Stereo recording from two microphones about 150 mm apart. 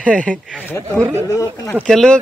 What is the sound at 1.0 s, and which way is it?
Speech, 20° right (ahead or behind).